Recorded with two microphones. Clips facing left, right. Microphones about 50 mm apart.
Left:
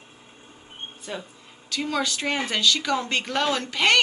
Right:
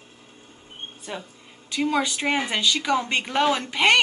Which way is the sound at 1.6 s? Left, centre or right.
Centre.